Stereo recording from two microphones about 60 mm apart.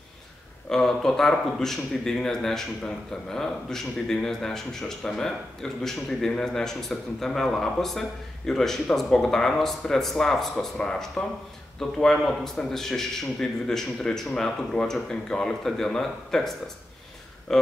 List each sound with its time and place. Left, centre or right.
0.7 s speech: centre